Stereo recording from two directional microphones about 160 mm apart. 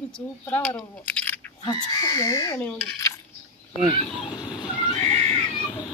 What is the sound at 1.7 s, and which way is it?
Speech, 20° left (ahead or behind).